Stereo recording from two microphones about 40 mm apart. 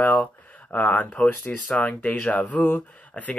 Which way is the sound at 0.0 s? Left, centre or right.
Left.